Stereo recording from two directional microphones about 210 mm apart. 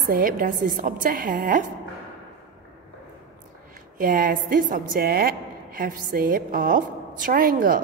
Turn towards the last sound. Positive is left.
turn(degrees=-40)  # may be behind; listen again after turning